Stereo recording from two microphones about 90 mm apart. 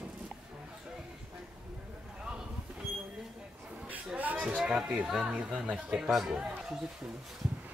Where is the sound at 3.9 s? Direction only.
15° right (ahead or behind).